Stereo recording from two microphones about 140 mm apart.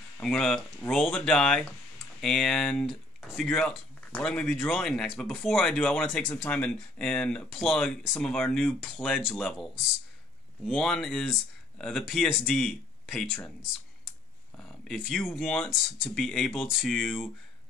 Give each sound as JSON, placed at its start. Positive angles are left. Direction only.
{"t": 0.2, "sound": "speech", "side_deg": 5}